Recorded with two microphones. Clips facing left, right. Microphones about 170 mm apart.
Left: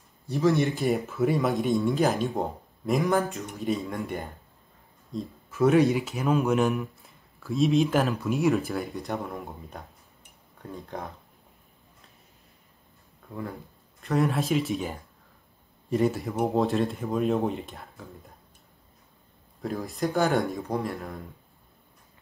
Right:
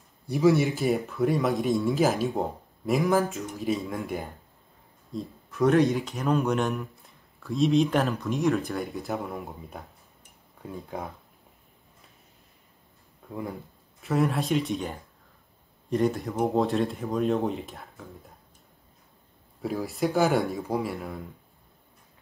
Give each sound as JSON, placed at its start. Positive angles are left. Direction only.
{"t": 0.3, "sound": "speech", "side_deg": -10}
{"t": 13.3, "sound": "speech", "side_deg": -15}
{"t": 14.0, "sound": "speech", "side_deg": 0}
{"t": 19.6, "sound": "speech", "side_deg": -5}